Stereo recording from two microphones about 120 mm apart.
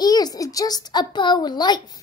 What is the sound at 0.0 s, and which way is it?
A woman's voice, 35° left (ahead or behind).